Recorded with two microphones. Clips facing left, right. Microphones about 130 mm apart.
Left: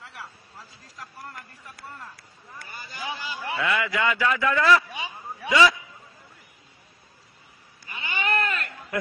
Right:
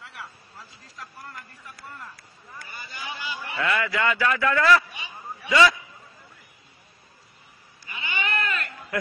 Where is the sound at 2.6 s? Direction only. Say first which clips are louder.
Left 2 dB; 40° left (ahead or behind).